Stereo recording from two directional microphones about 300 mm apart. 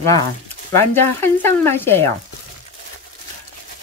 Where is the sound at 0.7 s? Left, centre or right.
Centre.